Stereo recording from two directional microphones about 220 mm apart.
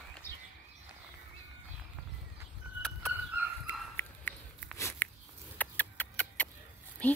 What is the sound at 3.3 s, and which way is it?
Dog, 10° right (ahead or behind).